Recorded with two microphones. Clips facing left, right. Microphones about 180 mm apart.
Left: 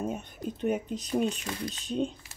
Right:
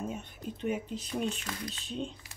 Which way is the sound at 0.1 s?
45° left (ahead or behind).